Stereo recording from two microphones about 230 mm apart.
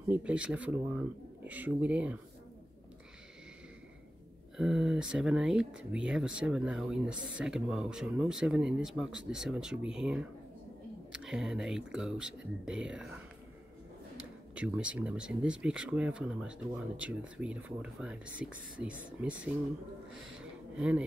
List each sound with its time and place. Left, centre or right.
0.1 s speech: centre
4.6 s speech: centre
11.2 s speech: centre